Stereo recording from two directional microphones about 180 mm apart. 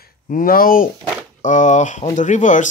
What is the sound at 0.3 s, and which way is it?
Speech, 50° left (ahead or behind).